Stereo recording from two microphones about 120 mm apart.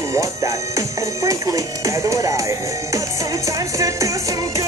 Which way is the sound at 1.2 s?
25° right (ahead or behind).